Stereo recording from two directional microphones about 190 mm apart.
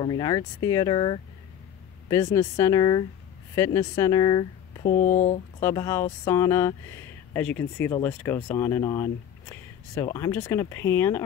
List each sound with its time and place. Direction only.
0.0 s speech: 20° left (ahead or behind)
4.8 s speech: 45° left (ahead or behind)
5.6 s speech: 15° left (ahead or behind)